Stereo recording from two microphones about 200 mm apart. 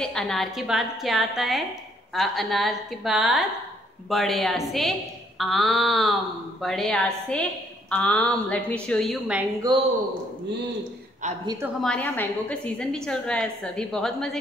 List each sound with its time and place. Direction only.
0.0 s a woman's voice: centre (ahead or behind)
9.6 s speech: 25° right (ahead or behind)
11.4 s a woman's voice: 10° right (ahead or behind)
11.8 s a woman's voice: 5° left (ahead or behind)